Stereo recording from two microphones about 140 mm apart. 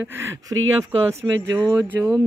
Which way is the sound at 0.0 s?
15° right (ahead or behind).